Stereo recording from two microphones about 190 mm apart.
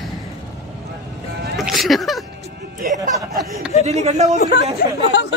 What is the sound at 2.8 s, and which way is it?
Music, 50° right (ahead or behind).